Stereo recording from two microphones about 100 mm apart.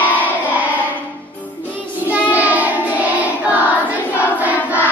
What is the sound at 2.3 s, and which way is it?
Child singing, 15° right (ahead or behind).